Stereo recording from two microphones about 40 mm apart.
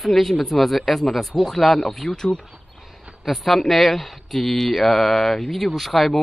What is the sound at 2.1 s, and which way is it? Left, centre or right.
Speech, centre.